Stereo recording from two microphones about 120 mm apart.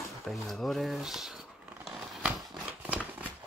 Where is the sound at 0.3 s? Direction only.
Centre (ahead or behind).